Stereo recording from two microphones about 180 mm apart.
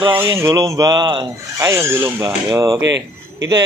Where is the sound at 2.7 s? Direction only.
80° right.